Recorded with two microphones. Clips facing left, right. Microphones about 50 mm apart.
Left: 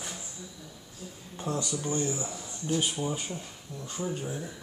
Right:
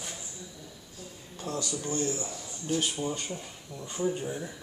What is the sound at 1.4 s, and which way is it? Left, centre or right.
Speech, left.